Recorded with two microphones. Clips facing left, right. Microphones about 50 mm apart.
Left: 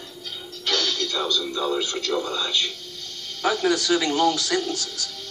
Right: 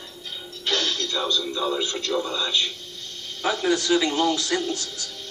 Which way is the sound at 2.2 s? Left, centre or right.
Right.